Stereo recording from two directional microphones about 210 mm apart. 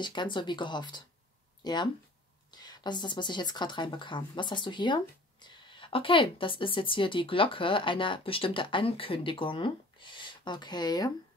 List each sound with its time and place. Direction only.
0.0 s speech: 20° left (ahead or behind)